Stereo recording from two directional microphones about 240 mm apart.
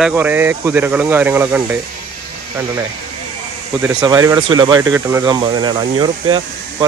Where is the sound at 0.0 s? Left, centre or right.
Centre.